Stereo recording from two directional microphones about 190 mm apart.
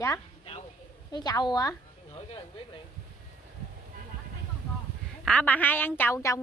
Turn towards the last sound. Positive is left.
turn(degrees=15)  # may be behind; listen again after turning